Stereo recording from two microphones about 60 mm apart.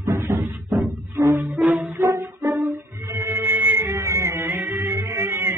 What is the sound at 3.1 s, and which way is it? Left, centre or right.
Music, right.